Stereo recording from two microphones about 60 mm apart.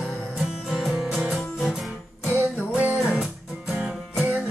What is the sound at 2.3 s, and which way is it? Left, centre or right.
Music, right.